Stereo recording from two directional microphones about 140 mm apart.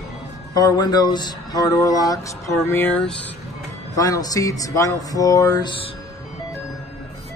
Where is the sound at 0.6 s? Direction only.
30° left (ahead or behind); by 3.2 s 10° left (ahead or behind).